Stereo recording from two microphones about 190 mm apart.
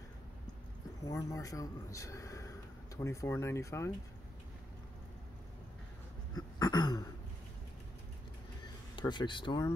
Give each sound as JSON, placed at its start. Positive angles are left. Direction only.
{"t": 1.0, "sound": "a man's voice", "side_deg": 20}
{"t": 6.3, "sound": "throat clearing", "side_deg": 20}
{"t": 8.9, "sound": "speech", "side_deg": 25}